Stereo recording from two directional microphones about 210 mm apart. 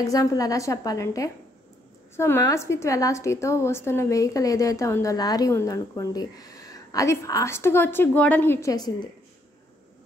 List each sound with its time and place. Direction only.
0.0 s a woman's voice: 15° left (ahead or behind)